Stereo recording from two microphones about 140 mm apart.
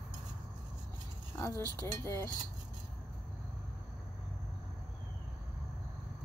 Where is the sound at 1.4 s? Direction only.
25° left (ahead or behind).